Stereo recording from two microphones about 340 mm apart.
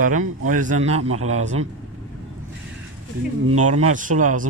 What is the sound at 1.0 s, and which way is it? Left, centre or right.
Speech, right.